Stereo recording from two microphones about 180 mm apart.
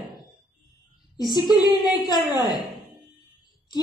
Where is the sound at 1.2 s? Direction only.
25° left (ahead or behind).